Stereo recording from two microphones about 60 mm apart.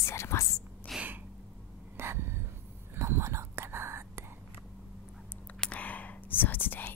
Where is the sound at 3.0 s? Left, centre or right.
Right.